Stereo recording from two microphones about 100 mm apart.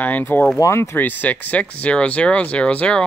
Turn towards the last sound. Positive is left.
turn(degrees=10)  # may be behind; listen again after turning